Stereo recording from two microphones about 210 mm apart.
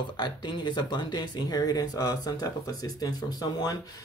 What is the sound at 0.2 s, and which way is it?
Speech, 20° left (ahead or behind).